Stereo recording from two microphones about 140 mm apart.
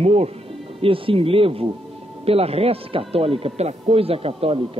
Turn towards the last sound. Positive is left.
turn(degrees=-40)  # may be behind; listen again after turning